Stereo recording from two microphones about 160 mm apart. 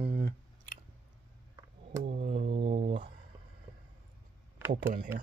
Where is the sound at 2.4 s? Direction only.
90° right.